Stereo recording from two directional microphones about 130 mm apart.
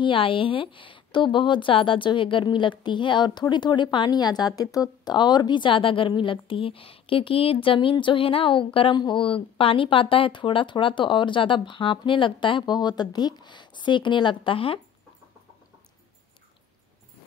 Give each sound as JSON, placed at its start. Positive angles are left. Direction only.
{"t": 0.0, "sound": "speech", "side_deg": 40}